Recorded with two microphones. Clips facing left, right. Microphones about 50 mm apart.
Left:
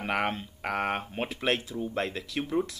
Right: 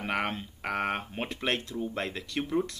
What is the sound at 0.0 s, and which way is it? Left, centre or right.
Speech, centre.